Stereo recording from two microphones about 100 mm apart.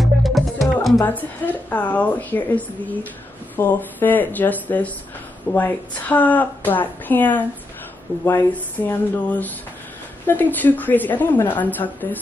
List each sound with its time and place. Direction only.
0.0 s music: centre (ahead or behind)
1.0 s a woman's voice: 15° left (ahead or behind)